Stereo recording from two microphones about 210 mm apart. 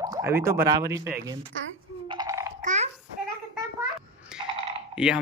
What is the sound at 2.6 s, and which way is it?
Babbling, 35° right (ahead or behind).